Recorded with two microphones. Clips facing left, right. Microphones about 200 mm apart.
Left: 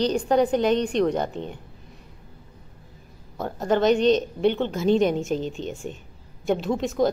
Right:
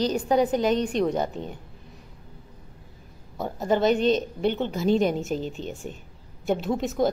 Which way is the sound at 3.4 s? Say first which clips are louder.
Left 1 dB; 5° right (ahead or behind).